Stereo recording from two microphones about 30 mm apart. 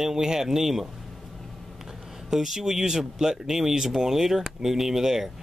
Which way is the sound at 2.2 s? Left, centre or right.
Centre.